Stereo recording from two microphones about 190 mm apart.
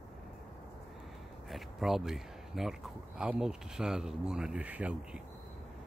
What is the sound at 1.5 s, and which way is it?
Speech, centre (ahead or behind).